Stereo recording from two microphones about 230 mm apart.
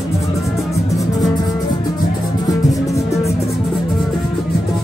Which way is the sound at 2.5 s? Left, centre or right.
Centre.